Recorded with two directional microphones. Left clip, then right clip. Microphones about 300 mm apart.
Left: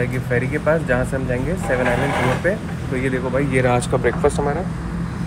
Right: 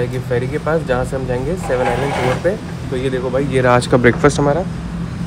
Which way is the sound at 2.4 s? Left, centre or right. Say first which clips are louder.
Right 3 dB; centre.